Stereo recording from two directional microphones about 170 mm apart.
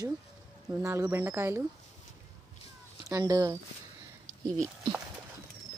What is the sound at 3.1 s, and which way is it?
Speech, 20° right (ahead or behind).